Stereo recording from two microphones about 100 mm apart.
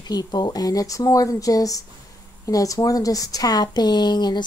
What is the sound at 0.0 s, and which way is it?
A woman's voice, 40° left (ahead or behind).